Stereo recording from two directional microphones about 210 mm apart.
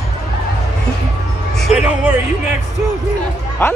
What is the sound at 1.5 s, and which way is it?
Music, 5° right (ahead or behind).